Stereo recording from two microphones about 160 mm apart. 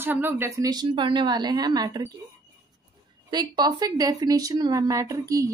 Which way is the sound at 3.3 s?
25° right (ahead or behind).